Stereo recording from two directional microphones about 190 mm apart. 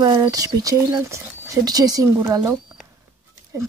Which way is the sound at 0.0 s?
20° right (ahead or behind).